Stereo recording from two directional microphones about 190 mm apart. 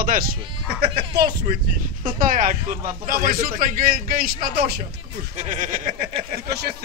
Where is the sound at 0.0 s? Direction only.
50° right (ahead or behind).